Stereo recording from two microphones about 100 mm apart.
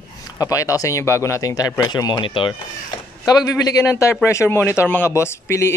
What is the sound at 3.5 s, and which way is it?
Speech, 35° left (ahead or behind).